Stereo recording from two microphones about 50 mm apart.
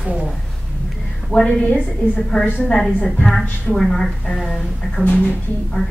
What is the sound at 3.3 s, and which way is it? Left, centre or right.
A woman's voice, centre.